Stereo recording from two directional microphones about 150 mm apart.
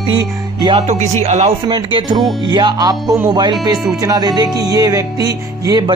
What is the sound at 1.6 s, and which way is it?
Music, 30° right (ahead or behind).